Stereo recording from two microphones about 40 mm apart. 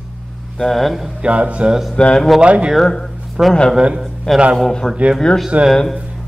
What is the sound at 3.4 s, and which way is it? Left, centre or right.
Speech, centre.